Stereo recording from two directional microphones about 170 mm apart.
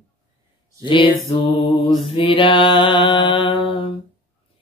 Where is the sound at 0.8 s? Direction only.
30° left (ahead or behind).